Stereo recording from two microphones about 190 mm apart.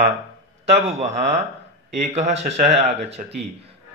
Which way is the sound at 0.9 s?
35° right (ahead or behind).